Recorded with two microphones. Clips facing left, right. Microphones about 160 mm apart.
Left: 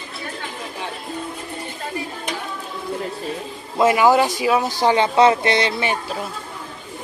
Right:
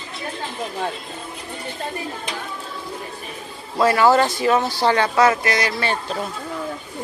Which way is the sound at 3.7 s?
15° left (ahead or behind).